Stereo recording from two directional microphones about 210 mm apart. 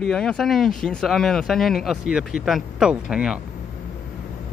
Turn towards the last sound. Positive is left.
turn(degrees=-5)  # may be behind; listen again after turning